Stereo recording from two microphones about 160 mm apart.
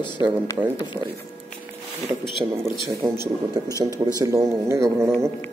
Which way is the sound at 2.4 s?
20° right (ahead or behind).